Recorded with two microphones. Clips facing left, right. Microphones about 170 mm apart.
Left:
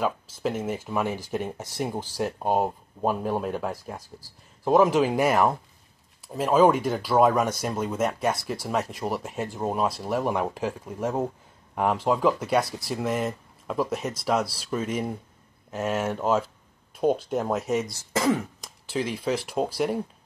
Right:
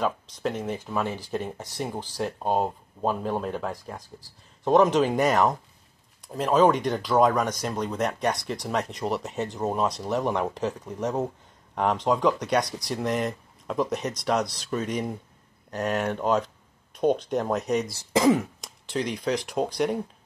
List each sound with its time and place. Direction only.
0.0 s speech: 5° left (ahead or behind)
17.9 s speech: 15° right (ahead or behind)
18.6 s speech: 5° left (ahead or behind)